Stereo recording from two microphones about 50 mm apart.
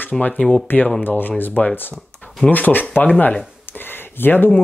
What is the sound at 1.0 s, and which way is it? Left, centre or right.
Speech, left.